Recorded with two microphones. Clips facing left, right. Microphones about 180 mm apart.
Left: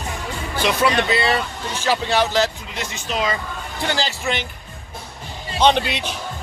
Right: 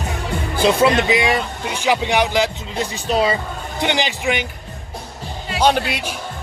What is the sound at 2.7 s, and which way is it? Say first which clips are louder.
Speech: right 6 dB; 35° right (ahead or behind).